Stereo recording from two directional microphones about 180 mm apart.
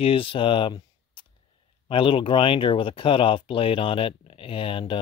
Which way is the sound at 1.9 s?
30° left (ahead or behind).